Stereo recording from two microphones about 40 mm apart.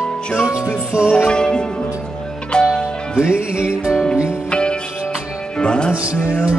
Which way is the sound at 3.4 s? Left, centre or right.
Right.